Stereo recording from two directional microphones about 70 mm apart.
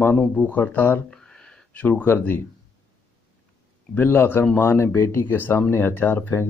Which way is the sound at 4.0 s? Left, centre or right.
Left.